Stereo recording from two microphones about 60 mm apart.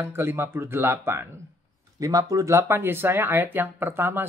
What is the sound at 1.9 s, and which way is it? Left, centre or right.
Speech, right.